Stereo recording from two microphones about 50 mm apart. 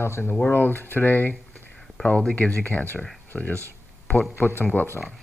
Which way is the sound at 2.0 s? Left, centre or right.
Left.